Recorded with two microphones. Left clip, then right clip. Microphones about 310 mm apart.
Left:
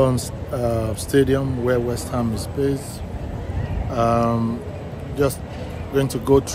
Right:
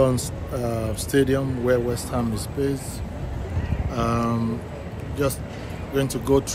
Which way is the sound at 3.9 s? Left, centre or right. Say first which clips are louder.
Left 6 dB; centre.